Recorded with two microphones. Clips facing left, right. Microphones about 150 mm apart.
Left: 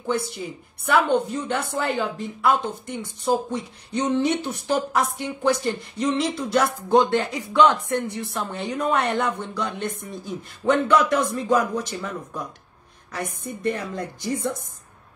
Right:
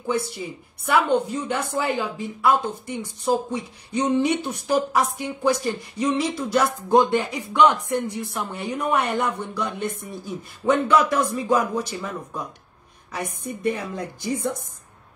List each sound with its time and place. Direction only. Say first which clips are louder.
0.8 s a woman's voice: even; 10° right (ahead or behind)
13.4 s a woman's voice: right 1 dB; 10° right (ahead or behind)